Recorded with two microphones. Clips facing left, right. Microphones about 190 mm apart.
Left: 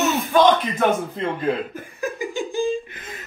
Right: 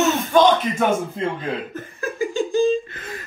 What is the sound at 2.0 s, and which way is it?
Giggle, 15° left (ahead or behind).